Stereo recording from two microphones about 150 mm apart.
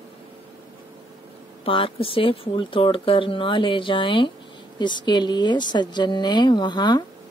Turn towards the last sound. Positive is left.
turn(degrees=30)  # may be behind; listen again after turning